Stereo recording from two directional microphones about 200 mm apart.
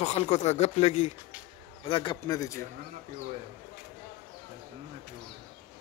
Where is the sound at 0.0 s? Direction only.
35° left (ahead or behind); by 2.6 s 15° left (ahead or behind).